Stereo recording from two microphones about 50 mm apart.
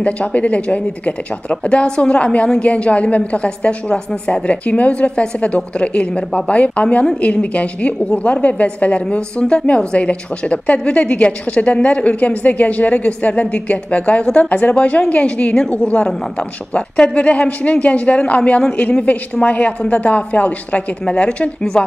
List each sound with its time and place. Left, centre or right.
0.0 s speech: left